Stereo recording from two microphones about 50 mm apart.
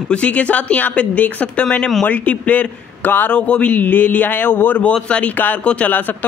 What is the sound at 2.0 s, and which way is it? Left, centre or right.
Speech, left.